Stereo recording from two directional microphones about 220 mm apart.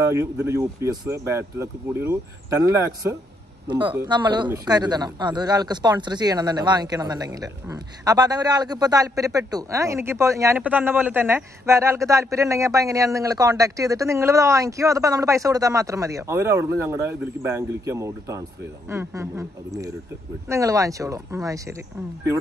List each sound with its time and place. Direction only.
0.1 s speech: 15° right (ahead or behind)